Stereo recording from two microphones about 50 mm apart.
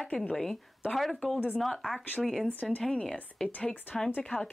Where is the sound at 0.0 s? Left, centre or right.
Left.